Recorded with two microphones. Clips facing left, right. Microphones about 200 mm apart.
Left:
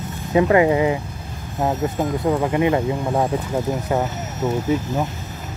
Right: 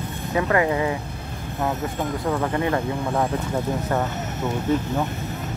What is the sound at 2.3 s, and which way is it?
Speech, 15° left (ahead or behind).